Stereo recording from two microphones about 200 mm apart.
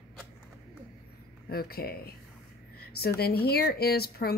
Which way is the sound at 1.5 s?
50° left (ahead or behind).